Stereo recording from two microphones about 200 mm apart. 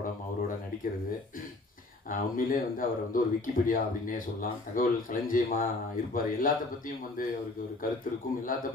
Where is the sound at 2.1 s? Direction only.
45° left (ahead or behind).